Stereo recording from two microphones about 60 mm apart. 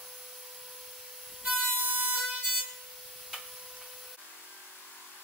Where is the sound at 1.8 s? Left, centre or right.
Right.